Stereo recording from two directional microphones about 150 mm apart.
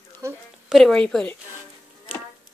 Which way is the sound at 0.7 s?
Centre (ahead or behind).